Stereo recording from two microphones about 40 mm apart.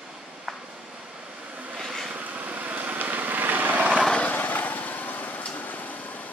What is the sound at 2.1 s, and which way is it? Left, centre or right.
Vehicle, right.